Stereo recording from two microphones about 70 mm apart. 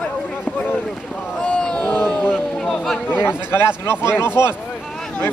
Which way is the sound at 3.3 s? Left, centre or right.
Left.